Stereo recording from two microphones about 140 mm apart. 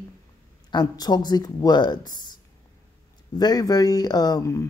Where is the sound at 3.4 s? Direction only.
30° left (ahead or behind).